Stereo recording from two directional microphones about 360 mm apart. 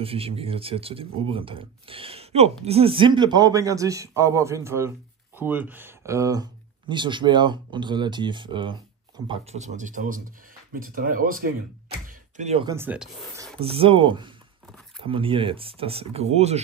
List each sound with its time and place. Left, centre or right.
0.0 s a man's voice: centre
13.6 s a man's voice: centre